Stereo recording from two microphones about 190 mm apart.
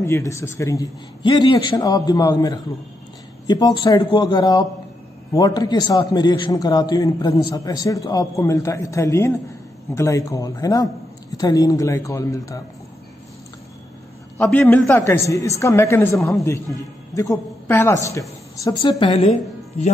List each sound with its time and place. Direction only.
0.0 s a man's voice: 15° left (ahead or behind)
14.4 s a woman's voice: 10° left (ahead or behind); by 19.3 s 30° left (ahead or behind)